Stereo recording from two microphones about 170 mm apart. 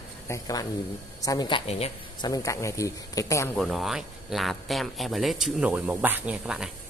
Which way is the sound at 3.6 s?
Centre (ahead or behind).